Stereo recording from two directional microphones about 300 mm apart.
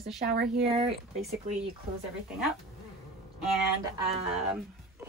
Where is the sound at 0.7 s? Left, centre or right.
Centre.